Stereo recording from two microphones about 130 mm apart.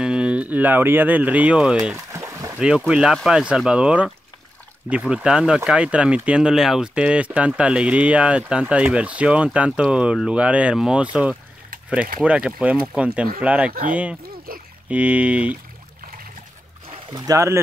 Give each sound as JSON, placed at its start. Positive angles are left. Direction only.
{"t": 0.0, "sound": "speech", "side_deg": -5}
{"t": 2.1, "sound": "a sound", "side_deg": -25}
{"t": 2.9, "sound": "speech", "side_deg": -5}
{"t": 14.9, "sound": "speech", "side_deg": -10}
{"t": 17.1, "sound": "speech", "side_deg": -30}